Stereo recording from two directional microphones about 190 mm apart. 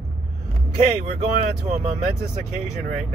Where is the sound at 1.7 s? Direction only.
40° right (ahead or behind).